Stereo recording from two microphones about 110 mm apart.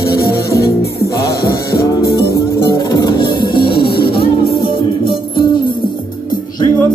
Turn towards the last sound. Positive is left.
turn(degrees=50)  # may be behind; listen again after turning